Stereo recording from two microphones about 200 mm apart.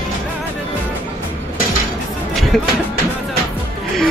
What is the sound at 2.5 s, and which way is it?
Speech, centre (ahead or behind).